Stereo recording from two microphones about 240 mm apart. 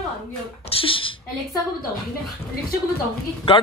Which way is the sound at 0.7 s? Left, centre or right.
Left.